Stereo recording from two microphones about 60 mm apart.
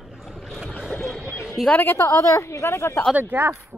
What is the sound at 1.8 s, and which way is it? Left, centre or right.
Speech, left.